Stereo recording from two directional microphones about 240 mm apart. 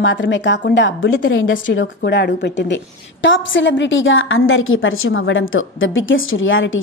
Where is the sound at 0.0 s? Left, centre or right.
Left.